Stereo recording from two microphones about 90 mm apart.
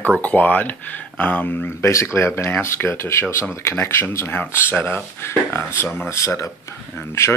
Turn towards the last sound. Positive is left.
turn(degrees=30)  # may be behind; listen again after turning